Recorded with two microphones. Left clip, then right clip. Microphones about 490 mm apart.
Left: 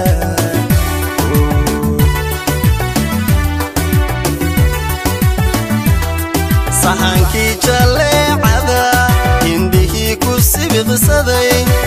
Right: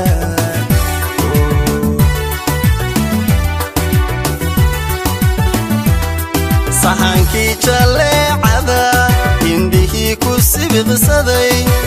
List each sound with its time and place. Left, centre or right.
6.9 s music: right